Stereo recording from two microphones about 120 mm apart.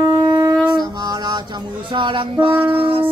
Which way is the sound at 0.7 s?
35° right (ahead or behind).